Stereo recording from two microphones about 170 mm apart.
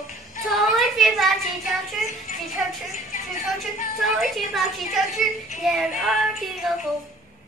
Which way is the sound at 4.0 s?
Centre (ahead or behind).